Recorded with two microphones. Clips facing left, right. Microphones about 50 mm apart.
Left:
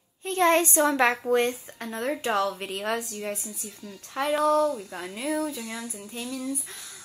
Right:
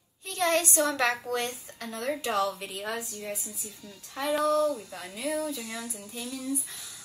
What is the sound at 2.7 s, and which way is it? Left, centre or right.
Speech, left.